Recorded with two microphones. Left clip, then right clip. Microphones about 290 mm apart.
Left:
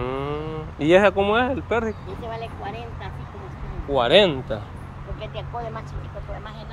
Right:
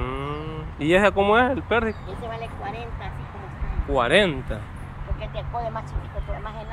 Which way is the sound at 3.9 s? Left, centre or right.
Centre.